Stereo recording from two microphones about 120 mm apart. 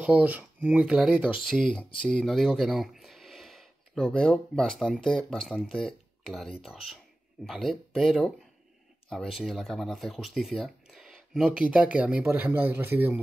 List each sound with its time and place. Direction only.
0.0 s speech: 15° right (ahead or behind)